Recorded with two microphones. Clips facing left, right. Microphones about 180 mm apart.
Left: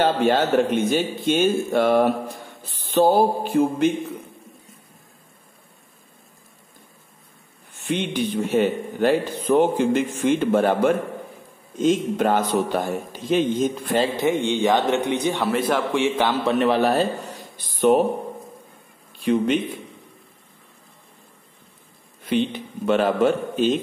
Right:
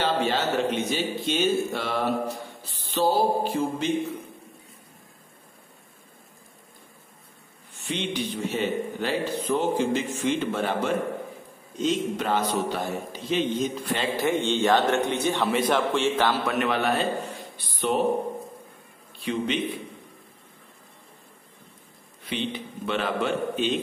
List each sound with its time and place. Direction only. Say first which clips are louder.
0.0 s a man's voice: left 6 dB; 50° left (ahead or behind)
2.9 s a sound: left 5 dB; 55° left (ahead or behind)
7.7 s a man's voice: left 5 dB; 55° left (ahead or behind)
14.1 s a man's voice: left 3 dB; 20° left (ahead or behind)
16.4 s a man's voice: left 6 dB; 35° left (ahead or behind)
19.2 s a man's voice: left 7 dB; 45° left (ahead or behind)
22.2 s a man's voice: left 8 dB; 45° left (ahead or behind)